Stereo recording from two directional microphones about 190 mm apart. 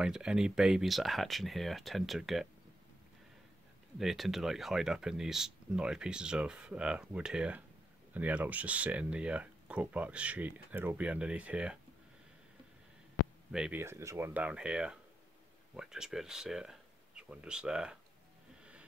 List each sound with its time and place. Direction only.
0.0 s speech: 5° right (ahead or behind)
4.0 s speech: centre (ahead or behind)
13.5 s speech: 5° right (ahead or behind)
18.6 s a sound: 5° right (ahead or behind)